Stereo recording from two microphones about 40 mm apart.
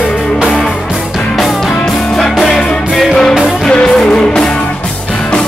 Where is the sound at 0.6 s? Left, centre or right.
Centre.